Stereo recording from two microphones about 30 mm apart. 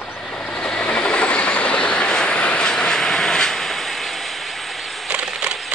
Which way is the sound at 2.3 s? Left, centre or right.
Left.